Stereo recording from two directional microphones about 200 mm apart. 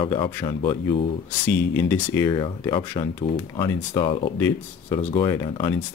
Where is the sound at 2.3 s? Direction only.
25° left (ahead or behind).